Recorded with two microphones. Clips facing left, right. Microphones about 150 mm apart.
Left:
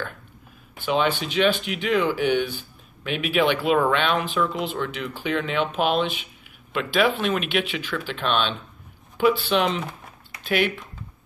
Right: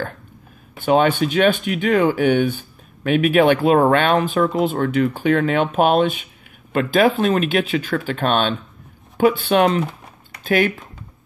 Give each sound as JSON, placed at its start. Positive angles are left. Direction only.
{"t": 0.7, "sound": "speech", "side_deg": -50}